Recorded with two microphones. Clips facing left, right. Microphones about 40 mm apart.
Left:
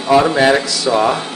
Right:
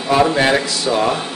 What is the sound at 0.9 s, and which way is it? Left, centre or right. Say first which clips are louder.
Speech: left 3 dB; centre.